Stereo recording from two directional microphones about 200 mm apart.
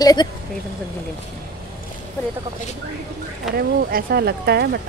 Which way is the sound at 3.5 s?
50° right (ahead or behind).